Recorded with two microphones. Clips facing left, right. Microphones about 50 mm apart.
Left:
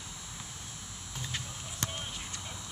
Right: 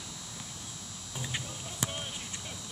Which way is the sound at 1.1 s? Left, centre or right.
Centre.